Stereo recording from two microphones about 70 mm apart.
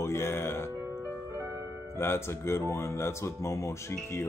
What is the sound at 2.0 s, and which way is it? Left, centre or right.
Speech, left.